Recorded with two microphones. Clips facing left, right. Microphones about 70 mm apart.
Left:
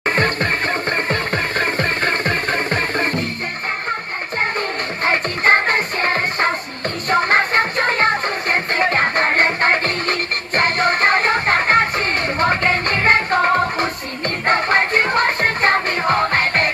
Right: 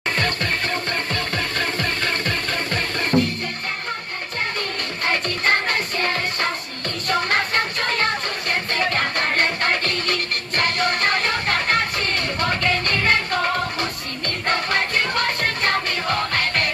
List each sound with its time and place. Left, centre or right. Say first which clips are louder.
0.1 s music: left 4 dB; left
5.0 s music: left 5 dB; left